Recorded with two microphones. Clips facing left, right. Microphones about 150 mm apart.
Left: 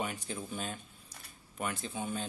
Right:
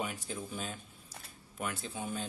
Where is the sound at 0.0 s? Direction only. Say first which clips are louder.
Left 1 dB; centre (ahead or behind).